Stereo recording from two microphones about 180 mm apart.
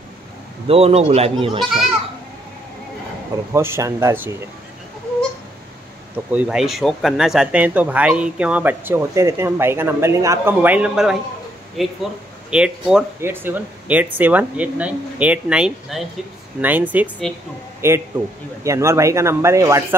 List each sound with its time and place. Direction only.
0.7 s speech: 35° right (ahead or behind)
3.5 s speech: 15° right (ahead or behind)
6.1 s speech: 5° right (ahead or behind)